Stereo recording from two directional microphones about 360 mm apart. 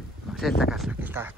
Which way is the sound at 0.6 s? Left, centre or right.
Centre.